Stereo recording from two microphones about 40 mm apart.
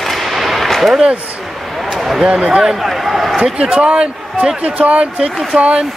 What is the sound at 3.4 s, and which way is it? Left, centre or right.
Speech, right.